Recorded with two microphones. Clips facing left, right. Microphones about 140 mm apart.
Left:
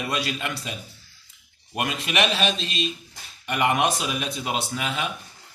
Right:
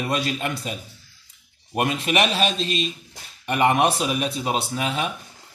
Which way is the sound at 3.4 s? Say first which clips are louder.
Right 3 dB; 30° right (ahead or behind).